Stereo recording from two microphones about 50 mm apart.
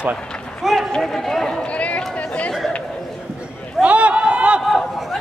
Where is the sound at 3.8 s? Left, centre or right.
Right.